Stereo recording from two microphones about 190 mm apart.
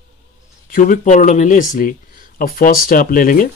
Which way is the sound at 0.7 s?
45° left (ahead or behind).